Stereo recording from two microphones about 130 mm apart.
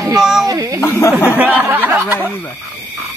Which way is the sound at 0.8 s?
20° left (ahead or behind).